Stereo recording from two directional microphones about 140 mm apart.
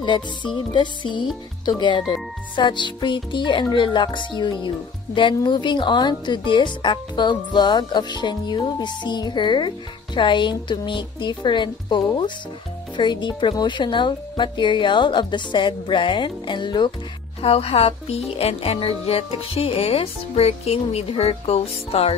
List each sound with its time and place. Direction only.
0.0 s a woman's voice: 35° left (ahead or behind)
17.4 s speech: 45° left (ahead or behind)